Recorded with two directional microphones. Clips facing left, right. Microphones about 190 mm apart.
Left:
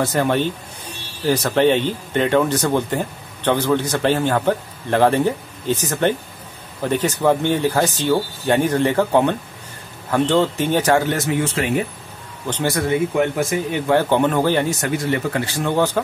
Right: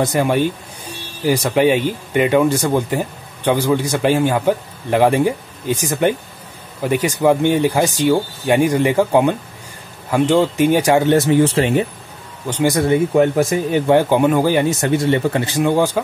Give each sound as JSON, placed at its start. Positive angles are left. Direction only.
{"t": 0.0, "sound": "speech", "side_deg": -10}
{"t": 12.4, "sound": "speech", "side_deg": -10}
{"t": 13.1, "sound": "speech", "side_deg": -35}
{"t": 13.8, "sound": "speech", "side_deg": -10}
{"t": 14.8, "sound": "speech", "side_deg": -25}